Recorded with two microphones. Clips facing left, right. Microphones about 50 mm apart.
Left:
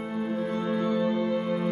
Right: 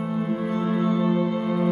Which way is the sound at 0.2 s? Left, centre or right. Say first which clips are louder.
Right 2 dB; centre.